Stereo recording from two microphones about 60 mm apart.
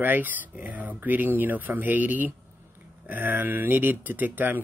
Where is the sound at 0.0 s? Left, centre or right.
Right.